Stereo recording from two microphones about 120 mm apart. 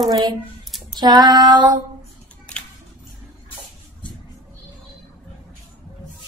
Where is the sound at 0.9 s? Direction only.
35° right (ahead or behind).